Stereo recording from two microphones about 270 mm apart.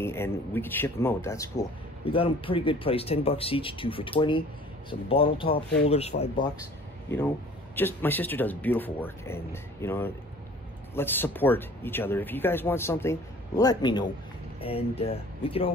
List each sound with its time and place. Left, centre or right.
0.0 s speech: centre
7.7 s speech: centre